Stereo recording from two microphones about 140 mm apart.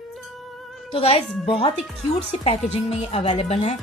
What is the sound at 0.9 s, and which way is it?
Speech, 45° left (ahead or behind).